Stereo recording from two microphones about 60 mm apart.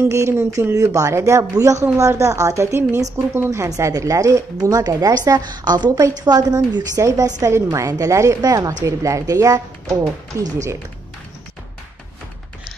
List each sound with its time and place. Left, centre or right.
0.0 s speech: right
0.7 s a woman's voice: right
1.5 s a woman's voice: right
3.4 s speech: right
7.5 s speech: right